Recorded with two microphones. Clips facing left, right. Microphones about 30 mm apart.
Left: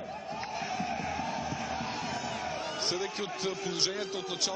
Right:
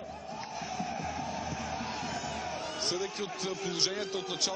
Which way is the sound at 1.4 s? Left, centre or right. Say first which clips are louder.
Left 2 dB; centre.